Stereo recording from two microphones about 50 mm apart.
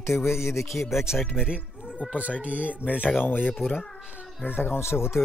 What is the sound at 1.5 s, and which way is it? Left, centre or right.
Cat, centre.